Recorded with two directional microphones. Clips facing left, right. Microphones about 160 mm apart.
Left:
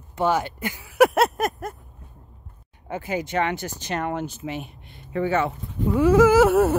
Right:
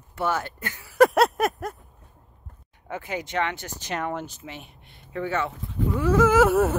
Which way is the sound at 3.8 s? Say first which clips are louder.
Left 2 dB; centre (ahead or behind).